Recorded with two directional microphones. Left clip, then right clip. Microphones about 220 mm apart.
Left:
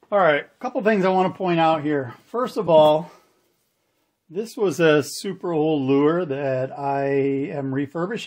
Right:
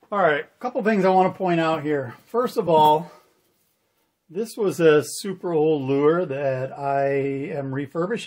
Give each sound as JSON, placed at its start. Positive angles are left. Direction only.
{"t": 0.1, "sound": "speech", "side_deg": 35}
{"t": 4.3, "sound": "speech", "side_deg": 30}